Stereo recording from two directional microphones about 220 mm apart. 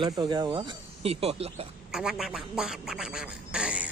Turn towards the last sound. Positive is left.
turn(degrees=-5)  # may be behind; listen again after turning